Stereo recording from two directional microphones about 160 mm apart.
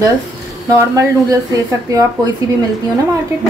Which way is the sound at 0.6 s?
20° right (ahead or behind).